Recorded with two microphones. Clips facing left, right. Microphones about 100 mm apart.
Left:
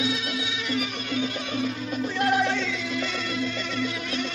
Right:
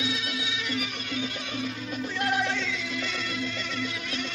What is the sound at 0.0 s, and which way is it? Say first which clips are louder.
Music: left 4 dB; 35° left (ahead or behind).